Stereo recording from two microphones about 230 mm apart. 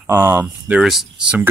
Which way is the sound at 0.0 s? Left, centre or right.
Centre.